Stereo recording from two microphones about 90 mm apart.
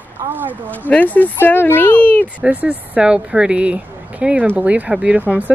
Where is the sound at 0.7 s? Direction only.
15° left (ahead or behind).